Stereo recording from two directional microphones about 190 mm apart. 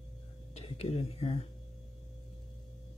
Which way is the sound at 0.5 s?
30° left (ahead or behind).